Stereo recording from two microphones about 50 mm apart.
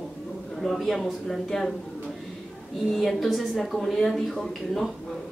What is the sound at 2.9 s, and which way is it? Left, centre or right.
Speech, centre.